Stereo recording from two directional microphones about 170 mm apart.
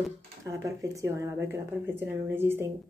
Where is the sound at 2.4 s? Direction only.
15° right (ahead or behind).